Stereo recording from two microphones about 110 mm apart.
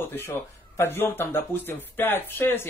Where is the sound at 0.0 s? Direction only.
20° left (ahead or behind).